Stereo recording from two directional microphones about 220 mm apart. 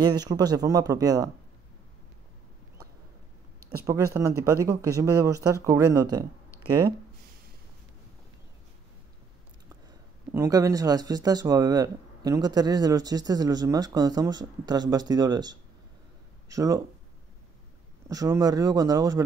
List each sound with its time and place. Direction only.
0.0 s speech: 20° right (ahead or behind)
3.8 s speech: 15° right (ahead or behind)
10.3 s speech: 15° right (ahead or behind)
18.0 s speech: 15° right (ahead or behind)